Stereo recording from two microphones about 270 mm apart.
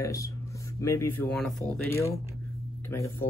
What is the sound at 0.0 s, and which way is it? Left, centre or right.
Speech, centre.